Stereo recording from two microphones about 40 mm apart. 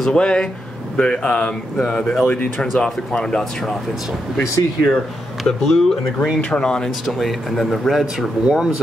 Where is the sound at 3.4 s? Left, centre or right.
Centre.